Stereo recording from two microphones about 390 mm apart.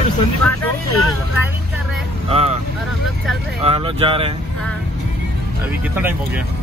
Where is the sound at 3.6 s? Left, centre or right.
Centre.